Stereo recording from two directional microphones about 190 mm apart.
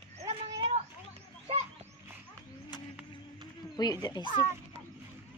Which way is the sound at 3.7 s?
20° left (ahead or behind).